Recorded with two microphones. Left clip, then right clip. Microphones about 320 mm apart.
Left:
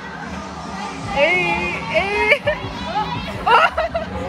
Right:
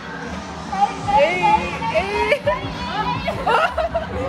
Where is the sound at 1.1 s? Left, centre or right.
Left.